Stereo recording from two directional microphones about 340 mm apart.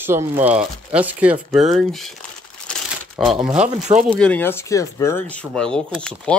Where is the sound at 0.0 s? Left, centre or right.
Centre.